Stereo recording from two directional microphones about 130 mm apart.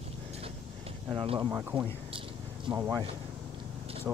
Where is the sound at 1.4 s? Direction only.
20° right (ahead or behind).